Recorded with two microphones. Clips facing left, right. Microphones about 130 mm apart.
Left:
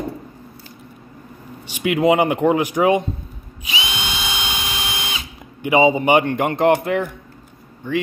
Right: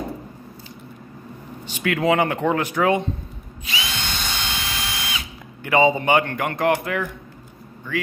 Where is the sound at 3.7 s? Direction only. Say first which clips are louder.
Left 3 dB; 15° left (ahead or behind).